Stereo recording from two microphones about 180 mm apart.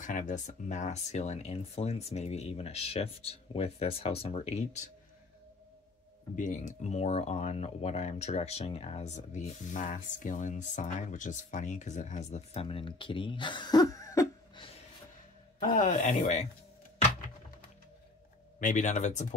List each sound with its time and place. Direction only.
0.0 s speech: 45° left (ahead or behind)
6.3 s speech: 45° left (ahead or behind); by 14.6 s 20° left (ahead or behind)
15.6 s speech: 45° left (ahead or behind)
18.6 s speech: 45° left (ahead or behind)